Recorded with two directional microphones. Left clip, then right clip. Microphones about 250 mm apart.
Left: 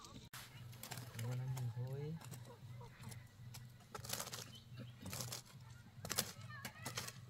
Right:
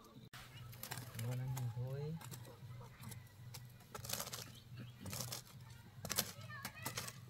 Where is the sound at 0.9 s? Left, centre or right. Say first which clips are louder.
Right 1 dB; centre.